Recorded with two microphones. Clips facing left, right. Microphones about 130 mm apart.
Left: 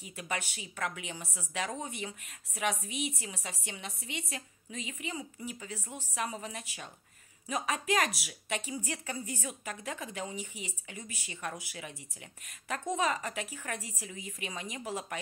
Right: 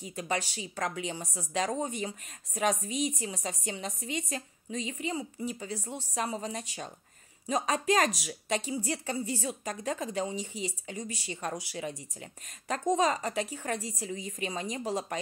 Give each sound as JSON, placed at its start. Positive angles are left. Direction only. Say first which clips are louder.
{"t": 0.0, "sound": "a woman's voice", "louder": "right 5 dB", "side_deg": -35}